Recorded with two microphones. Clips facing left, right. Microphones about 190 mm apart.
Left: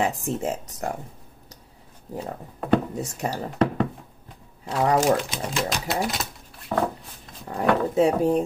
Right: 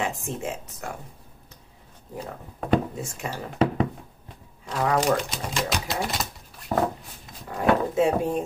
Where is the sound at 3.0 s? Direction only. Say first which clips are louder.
Left 4 dB; 40° left (ahead or behind).